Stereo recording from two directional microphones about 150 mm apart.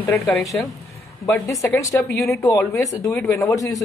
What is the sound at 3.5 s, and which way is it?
Speech, 20° left (ahead or behind).